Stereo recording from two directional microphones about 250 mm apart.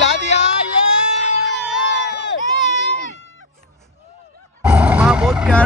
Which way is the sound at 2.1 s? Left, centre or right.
Left.